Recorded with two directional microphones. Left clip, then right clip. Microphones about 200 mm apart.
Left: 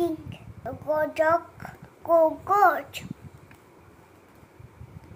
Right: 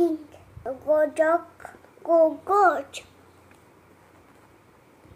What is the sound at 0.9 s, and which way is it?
Speech, 15° right (ahead or behind).